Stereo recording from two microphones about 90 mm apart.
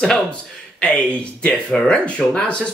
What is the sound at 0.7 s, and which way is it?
Speech, 10° left (ahead or behind).